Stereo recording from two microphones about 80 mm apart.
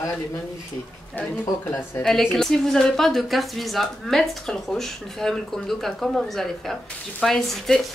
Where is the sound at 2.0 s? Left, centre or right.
Centre.